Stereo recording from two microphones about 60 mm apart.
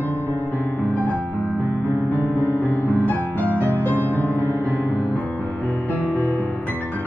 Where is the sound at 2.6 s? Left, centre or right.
Left.